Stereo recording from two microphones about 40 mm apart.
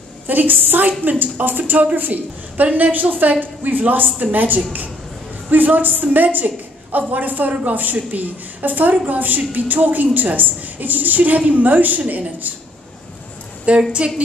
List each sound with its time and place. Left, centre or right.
0.3 s a woman's voice: right
13.9 s a woman's voice: right